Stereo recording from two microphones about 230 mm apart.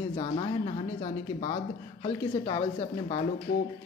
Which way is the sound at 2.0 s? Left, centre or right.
Centre.